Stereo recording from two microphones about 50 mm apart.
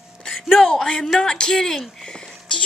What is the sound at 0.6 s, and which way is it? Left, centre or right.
Speech, centre.